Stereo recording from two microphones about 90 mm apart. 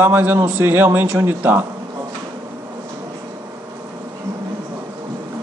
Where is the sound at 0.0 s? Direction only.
20° right (ahead or behind).